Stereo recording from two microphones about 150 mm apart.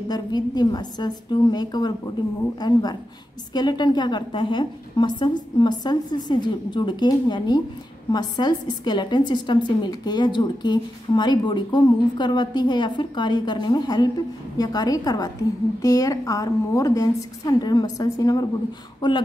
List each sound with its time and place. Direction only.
0.1 s a woman's voice: 25° left (ahead or behind)